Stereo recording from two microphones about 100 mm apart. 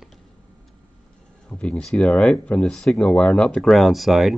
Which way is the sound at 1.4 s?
10° left (ahead or behind).